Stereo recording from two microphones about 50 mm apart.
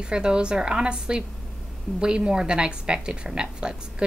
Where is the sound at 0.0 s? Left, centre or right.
Centre.